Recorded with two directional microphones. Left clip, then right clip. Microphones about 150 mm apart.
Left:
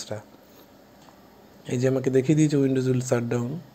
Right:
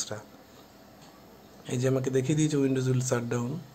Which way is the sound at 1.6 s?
25° left (ahead or behind).